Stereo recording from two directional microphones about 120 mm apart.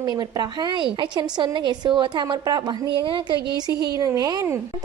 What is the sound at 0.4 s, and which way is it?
A child's voice, 40° right (ahead or behind).